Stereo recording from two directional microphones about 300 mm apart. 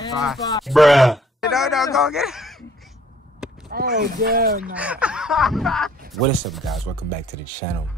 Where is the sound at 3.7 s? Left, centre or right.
Right.